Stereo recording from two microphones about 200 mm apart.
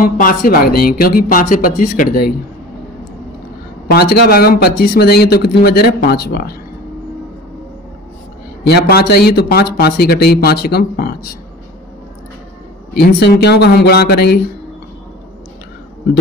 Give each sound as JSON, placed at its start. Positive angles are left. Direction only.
{"t": 0.0, "sound": "speech", "side_deg": 45}
{"t": 3.8, "sound": "speech", "side_deg": 55}
{"t": 8.6, "sound": "speech", "side_deg": 55}
{"t": 12.9, "sound": "speech", "side_deg": 55}